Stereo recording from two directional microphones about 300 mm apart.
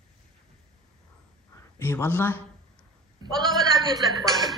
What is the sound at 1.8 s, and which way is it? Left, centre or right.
Speech, centre.